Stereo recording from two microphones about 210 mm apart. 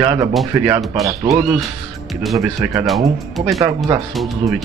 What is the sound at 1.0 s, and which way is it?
Speech, 15° right (ahead or behind).